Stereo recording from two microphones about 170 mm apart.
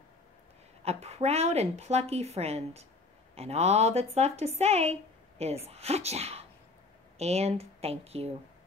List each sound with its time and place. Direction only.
0.8 s a woman's voice: 40° right (ahead or behind)